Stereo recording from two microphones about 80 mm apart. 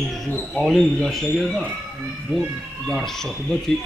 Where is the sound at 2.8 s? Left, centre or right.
Centre.